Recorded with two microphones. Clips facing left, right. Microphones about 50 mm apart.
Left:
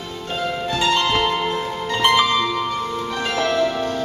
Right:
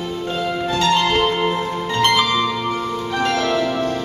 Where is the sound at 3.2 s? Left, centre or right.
Centre.